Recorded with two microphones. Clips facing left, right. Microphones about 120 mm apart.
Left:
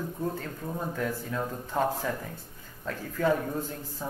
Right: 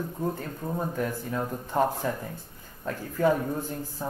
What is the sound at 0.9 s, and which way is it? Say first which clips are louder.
Speech: right 2 dB; 15° right (ahead or behind).